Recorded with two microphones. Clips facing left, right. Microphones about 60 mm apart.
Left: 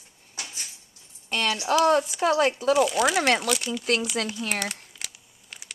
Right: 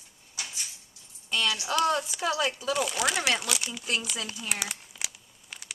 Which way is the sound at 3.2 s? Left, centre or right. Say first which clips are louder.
Left 6 dB; left.